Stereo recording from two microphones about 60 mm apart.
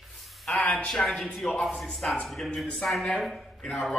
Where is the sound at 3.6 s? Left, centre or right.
Centre.